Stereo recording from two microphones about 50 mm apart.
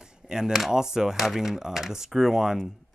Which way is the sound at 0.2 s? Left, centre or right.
Centre.